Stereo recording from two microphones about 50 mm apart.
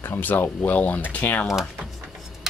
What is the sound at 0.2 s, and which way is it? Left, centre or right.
Speech, left.